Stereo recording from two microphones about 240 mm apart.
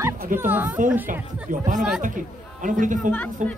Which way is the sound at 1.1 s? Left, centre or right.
Right.